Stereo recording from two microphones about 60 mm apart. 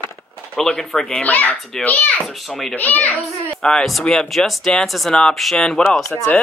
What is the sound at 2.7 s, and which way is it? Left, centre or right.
Speech, left.